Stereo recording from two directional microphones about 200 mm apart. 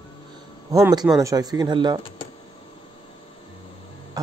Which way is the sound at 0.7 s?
15° right (ahead or behind).